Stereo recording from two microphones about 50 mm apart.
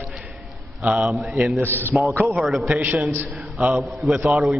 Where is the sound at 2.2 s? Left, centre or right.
Centre.